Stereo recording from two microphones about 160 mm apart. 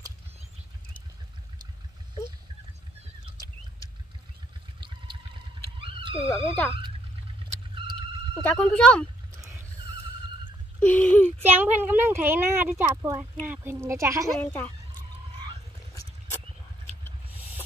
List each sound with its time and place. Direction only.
4.7 s pour: 30° right (ahead or behind)
5.8 s wild animals: 35° right (ahead or behind)
6.2 s speech: 15° left (ahead or behind)
7.7 s vehicle: 30° right (ahead or behind)
8.4 s speech: 5° left (ahead or behind)
10.8 s speech: 10° left (ahead or behind)
11.4 s a woman's voice: 10° right (ahead or behind)
17.3 s a sound: 10° right (ahead or behind)